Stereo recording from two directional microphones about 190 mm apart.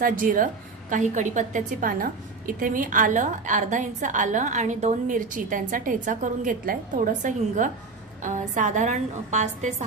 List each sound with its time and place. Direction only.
0.0 s a woman's voice: 45° right (ahead or behind)